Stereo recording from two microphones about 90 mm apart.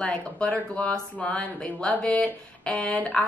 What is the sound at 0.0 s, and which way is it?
Speech, 15° left (ahead or behind).